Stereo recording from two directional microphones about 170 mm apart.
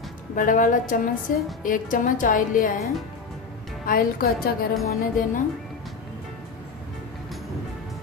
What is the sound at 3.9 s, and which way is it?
Speech, 60° left (ahead or behind).